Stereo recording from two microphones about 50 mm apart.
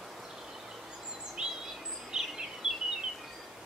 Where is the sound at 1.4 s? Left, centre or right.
Centre.